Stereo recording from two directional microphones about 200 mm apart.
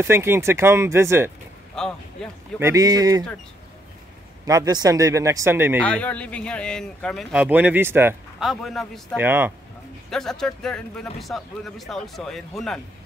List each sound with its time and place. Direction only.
0.0 s speech: 10° right (ahead or behind)
1.8 s speech: 5° left (ahead or behind)
2.6 s speech: 15° right (ahead or behind)
4.5 s speech: 20° right (ahead or behind)
5.9 s speech: 5° left (ahead or behind); by 8.5 s 10° right (ahead or behind)
8.5 s speech: centre (ahead or behind)
9.2 s speech: 10° right (ahead or behind)
10.0 s speech: centre (ahead or behind)